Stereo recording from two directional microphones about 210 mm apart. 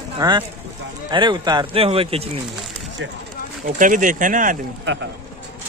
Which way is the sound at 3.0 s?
65° right (ahead or behind).